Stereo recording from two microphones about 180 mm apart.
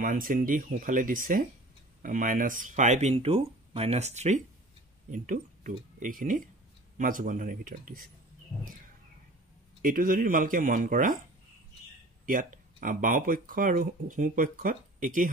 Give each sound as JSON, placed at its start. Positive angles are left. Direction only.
{"t": 0.0, "sound": "speech", "side_deg": -50}
{"t": 9.8, "sound": "speech", "side_deg": -50}
{"t": 12.3, "sound": "speech", "side_deg": -50}